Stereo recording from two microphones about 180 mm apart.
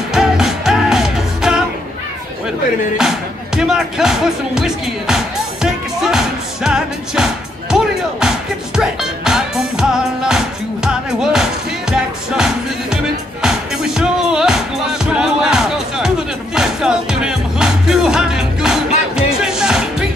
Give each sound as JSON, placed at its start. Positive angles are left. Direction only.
{"t": 0.1, "sound": "music", "side_deg": -5}
{"t": 3.0, "sound": "music", "side_deg": -5}